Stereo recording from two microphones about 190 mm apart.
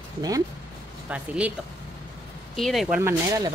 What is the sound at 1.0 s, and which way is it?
Speech, 5° right (ahead or behind).